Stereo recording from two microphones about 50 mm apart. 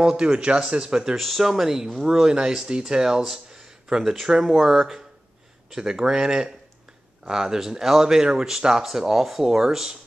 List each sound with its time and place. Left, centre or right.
0.0 s speech: centre
1.1 s speech: centre